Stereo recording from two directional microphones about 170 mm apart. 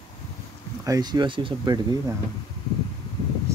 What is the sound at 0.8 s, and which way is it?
Speech, 20° right (ahead or behind).